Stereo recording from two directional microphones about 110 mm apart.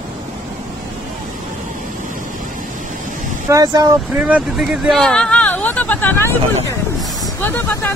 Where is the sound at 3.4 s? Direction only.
35° right (ahead or behind).